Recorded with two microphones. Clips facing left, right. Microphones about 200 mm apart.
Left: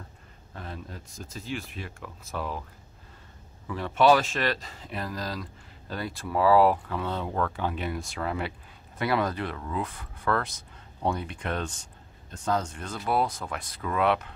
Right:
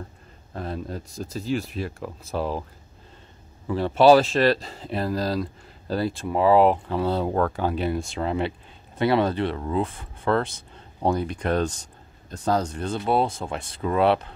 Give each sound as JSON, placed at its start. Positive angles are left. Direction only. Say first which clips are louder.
{"t": 0.5, "sound": "speech", "louder": "right 9 dB", "side_deg": -35}
{"t": 3.6, "sound": "speech", "louder": "right 5 dB", "side_deg": -30}
{"t": 7.0, "sound": "speech", "louder": "right 7 dB", "side_deg": -35}